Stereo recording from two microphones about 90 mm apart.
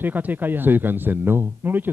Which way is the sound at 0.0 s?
20° right (ahead or behind).